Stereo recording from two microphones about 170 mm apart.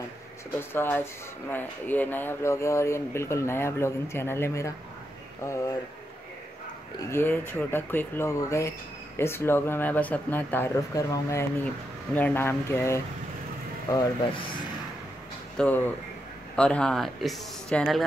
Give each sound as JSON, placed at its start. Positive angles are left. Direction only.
{"t": 0.6, "sound": "speech", "side_deg": 15}
{"t": 7.0, "sound": "speech", "side_deg": 15}
{"t": 15.5, "sound": "speech", "side_deg": 10}